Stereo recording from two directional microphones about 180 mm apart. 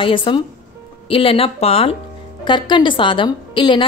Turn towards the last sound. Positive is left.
turn(degrees=25)  # may be behind; listen again after turning